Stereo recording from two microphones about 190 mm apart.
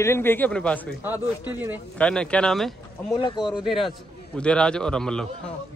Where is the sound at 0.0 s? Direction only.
10° left (ahead or behind).